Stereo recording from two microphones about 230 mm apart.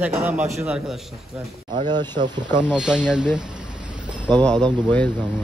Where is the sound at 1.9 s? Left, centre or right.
Centre.